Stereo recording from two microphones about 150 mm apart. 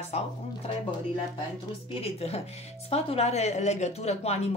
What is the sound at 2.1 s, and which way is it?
Speech, 45° left (ahead or behind).